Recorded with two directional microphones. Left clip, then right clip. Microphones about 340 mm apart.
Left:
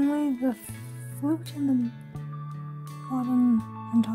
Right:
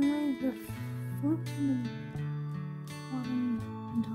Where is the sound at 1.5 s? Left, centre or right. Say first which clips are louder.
Left 6 dB; centre.